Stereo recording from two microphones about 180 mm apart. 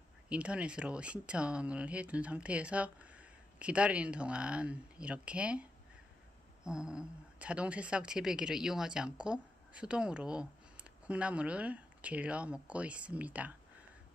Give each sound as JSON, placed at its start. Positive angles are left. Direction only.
{"t": 0.3, "sound": "a woman's voice", "side_deg": -5}